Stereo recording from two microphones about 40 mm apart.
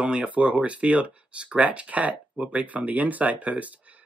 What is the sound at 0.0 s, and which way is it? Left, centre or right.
Speech, right.